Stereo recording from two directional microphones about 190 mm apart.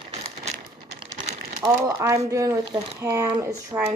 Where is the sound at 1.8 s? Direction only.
15° right (ahead or behind).